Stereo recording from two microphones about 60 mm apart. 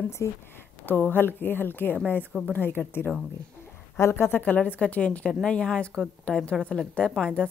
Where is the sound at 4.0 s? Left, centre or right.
Left.